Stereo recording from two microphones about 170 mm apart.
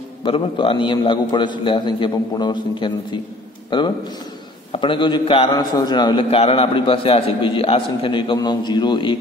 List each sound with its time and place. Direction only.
0.2 s a man's voice: 30° left (ahead or behind)